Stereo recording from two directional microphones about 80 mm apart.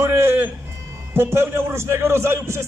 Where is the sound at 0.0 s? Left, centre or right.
Right.